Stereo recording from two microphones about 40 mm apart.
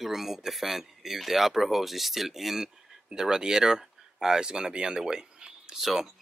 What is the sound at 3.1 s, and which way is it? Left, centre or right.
Speech, centre.